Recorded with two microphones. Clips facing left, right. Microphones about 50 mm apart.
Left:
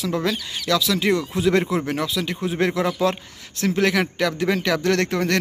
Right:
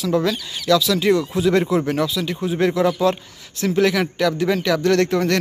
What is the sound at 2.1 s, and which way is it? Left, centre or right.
Speech, left.